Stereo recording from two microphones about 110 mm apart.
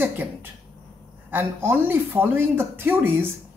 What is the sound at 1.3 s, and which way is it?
Speech, 20° right (ahead or behind).